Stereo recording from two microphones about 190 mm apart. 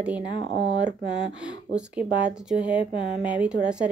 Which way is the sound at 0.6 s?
65° right (ahead or behind).